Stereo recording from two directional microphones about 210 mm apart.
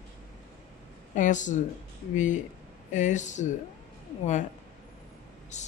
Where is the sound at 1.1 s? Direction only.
35° left (ahead or behind).